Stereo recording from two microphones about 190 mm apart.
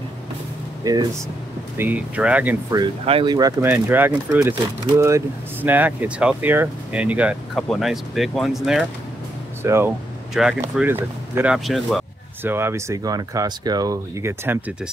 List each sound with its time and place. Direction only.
0.8 s speech: 15° right (ahead or behind)
2.7 s speech: 25° right (ahead or behind)
3.7 s speech: 5° right (ahead or behind)
9.6 s speech: 15° right (ahead or behind)
12.4 s speech: 10° right (ahead or behind)